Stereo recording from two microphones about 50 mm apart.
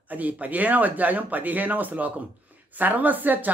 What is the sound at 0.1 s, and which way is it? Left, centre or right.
Speech, right.